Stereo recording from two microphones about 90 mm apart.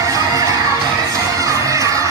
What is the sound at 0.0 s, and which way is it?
Crowd, 35° right (ahead or behind).